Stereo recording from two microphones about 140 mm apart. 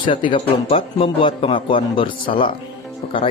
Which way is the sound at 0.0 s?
35° left (ahead or behind).